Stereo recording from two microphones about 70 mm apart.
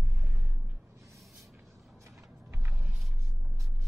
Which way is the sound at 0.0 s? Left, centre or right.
Right.